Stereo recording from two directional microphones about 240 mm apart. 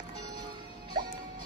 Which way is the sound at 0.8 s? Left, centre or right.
Centre.